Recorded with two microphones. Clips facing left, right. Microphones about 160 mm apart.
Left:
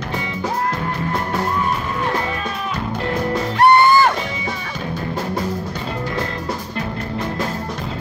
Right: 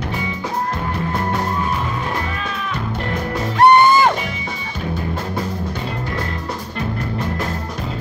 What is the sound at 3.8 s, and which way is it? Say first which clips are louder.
Music: even; 20° right (ahead or behind).